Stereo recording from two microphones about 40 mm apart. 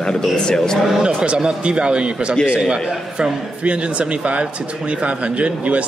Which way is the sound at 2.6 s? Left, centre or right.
Centre.